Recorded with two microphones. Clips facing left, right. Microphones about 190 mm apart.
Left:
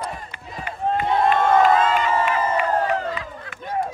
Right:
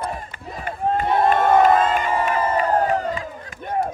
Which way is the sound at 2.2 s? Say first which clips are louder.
Right 1 dB; 45° right (ahead or behind).